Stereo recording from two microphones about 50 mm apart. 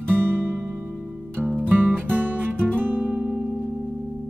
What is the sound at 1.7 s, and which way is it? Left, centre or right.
Music, right.